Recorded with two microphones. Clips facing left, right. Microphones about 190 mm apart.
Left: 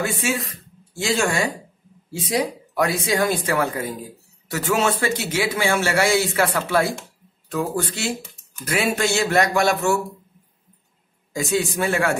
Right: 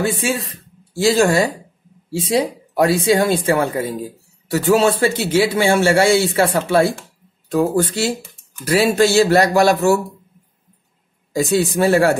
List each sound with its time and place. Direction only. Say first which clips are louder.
0.0 s speech: right 4 dB; 30° right (ahead or behind)
11.3 s speech: right 6 dB; 35° right (ahead or behind)